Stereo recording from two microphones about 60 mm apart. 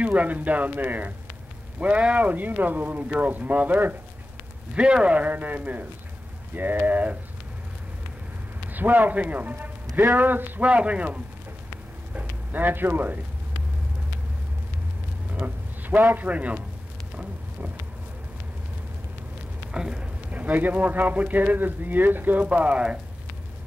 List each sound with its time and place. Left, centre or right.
0.0 s a man's voice: right
1.8 s a man's voice: centre
4.7 s a man's voice: centre
8.6 s a man's voice: right
12.1 s a sound: right
15.4 s speech: right
19.7 s a man's voice: centre